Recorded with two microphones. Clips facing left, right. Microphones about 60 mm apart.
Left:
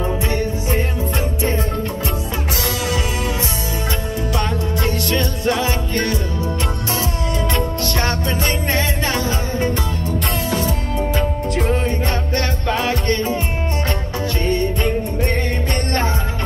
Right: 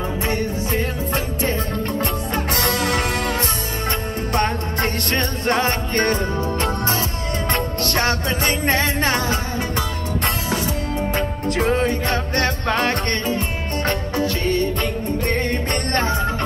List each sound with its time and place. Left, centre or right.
2.5 s music: right
11.1 s music: right
15.7 s music: right